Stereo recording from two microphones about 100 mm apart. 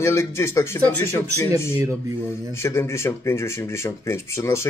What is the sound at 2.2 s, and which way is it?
Speech, 25° left (ahead or behind).